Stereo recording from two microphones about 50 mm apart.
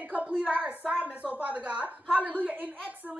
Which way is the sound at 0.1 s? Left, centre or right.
Right.